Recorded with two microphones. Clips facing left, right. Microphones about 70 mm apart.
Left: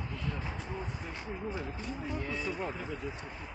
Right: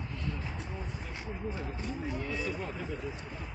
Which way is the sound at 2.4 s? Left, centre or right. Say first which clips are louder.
Even; left.